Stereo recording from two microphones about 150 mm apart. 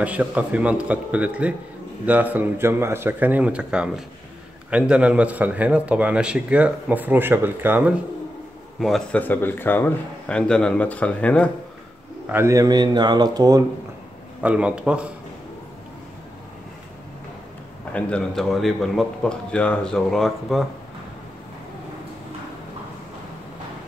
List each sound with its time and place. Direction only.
0.0 s a man's voice: 10° right (ahead or behind)
8.7 s speech: centre (ahead or behind)
12.3 s speech: 15° right (ahead or behind)
14.4 s a man's voice: 5° right (ahead or behind)
17.9 s a man's voice: 5° left (ahead or behind)